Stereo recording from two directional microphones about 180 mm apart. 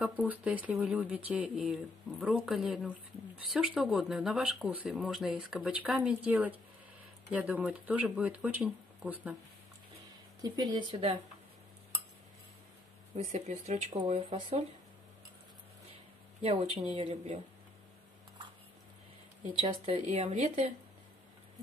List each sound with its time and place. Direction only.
0.0 s speech: 5° right (ahead or behind)
10.4 s speech: 20° right (ahead or behind)
13.1 s speech: 40° right (ahead or behind)
16.9 s speech: 35° right (ahead or behind)
19.7 s speech: 35° right (ahead or behind)